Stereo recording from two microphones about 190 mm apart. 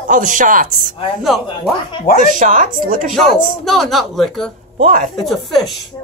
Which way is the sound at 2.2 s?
40° right (ahead or behind).